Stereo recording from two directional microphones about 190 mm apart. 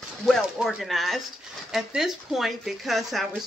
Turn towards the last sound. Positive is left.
turn(degrees=0)  # may be behind; listen again after turning